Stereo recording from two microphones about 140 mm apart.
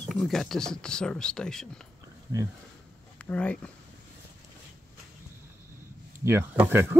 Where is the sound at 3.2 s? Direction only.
10° left (ahead or behind).